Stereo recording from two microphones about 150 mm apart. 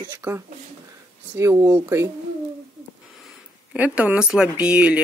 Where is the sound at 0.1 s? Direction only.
15° right (ahead or behind).